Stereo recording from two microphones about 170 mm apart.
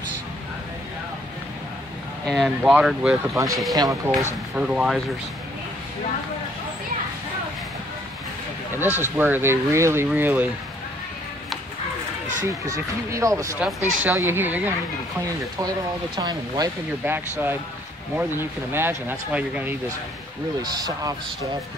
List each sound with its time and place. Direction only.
2.2 s speech: centre (ahead or behind)
3.3 s speech: 20° right (ahead or behind)
4.6 s speech: 5° right (ahead or behind)
8.9 s speech: 10° right (ahead or behind)
12.4 s speech: 20° right (ahead or behind)
16.2 s speech: 25° right (ahead or behind)
17.0 s speech: 10° right (ahead or behind)
18.7 s speech: 15° right (ahead or behind)
20.6 s speech: 20° right (ahead or behind)